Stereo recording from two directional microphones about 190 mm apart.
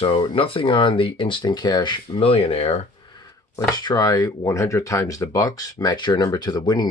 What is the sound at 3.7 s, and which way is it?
Speech, 20° left (ahead or behind).